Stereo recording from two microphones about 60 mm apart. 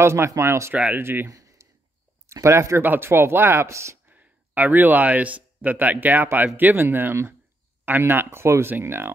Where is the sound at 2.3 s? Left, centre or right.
Right.